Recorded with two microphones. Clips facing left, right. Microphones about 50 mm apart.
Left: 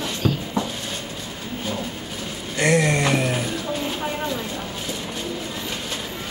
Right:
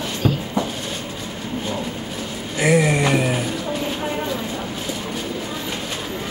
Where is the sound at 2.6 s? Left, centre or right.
Centre.